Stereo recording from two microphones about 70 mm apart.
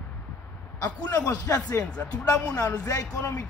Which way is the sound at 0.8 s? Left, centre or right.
Left.